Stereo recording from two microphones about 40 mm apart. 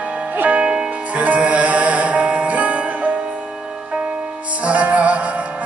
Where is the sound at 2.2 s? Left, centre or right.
Right.